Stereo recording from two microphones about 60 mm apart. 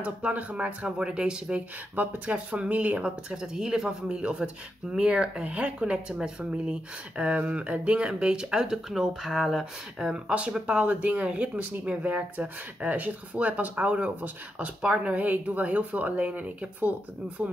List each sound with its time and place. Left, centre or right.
0.0 s speech: right
2.0 s speech: right
3.3 s speech: centre; by 16.9 s right